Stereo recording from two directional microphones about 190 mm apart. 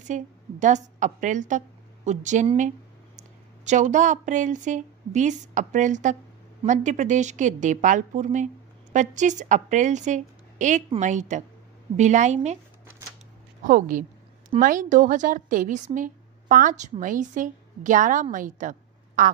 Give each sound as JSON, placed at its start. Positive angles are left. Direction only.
{"t": 0.0, "sound": "a woman's voice", "side_deg": -40}
{"t": 13.7, "sound": "a woman's voice", "side_deg": -45}